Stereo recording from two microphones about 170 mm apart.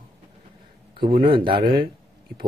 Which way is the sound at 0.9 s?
30° right (ahead or behind).